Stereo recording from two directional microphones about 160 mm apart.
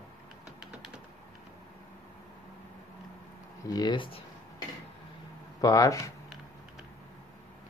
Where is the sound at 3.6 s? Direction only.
25° left (ahead or behind).